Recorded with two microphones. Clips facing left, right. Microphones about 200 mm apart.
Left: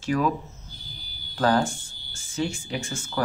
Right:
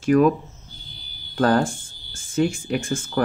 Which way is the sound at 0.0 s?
55° right (ahead or behind).